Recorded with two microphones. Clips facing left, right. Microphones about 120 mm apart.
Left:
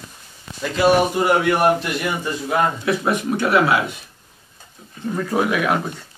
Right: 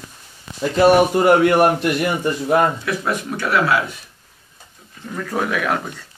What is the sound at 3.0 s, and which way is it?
Speech, 20° left (ahead or behind).